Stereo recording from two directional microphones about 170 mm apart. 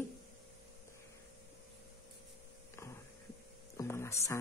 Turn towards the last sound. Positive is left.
turn(degrees=15)  # may be behind; listen again after turning